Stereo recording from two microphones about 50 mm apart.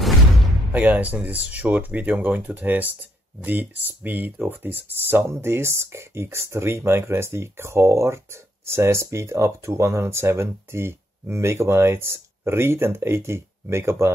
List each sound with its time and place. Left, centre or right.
0.7 s speech: right